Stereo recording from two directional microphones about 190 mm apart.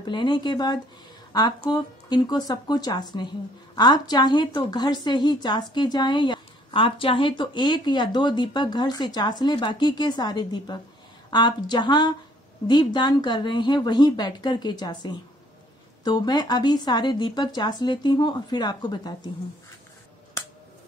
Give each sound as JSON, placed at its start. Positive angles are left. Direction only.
{"t": 0.0, "sound": "a woman's voice", "side_deg": 25}
{"t": 20.4, "sound": "finger snapping", "side_deg": 15}